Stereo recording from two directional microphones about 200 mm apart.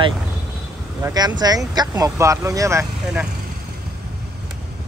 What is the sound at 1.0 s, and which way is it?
Speech, 20° right (ahead or behind).